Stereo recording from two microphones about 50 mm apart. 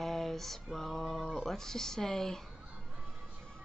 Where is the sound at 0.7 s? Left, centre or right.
Centre.